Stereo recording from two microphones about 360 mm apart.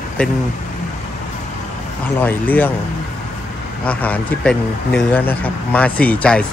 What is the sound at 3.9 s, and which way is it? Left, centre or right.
Speech, centre.